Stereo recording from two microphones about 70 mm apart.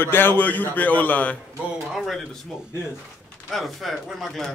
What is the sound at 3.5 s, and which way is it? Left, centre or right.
Speech, centre.